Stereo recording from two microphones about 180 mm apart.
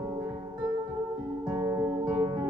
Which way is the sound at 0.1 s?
20° right (ahead or behind).